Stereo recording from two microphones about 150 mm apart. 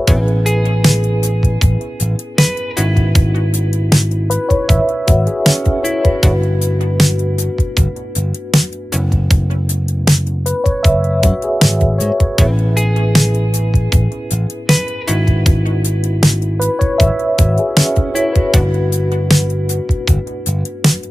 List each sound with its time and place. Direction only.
0.0 s music: centre (ahead or behind)
2.3 s music: centre (ahead or behind)
8.5 s music: centre (ahead or behind)
14.7 s music: centre (ahead or behind)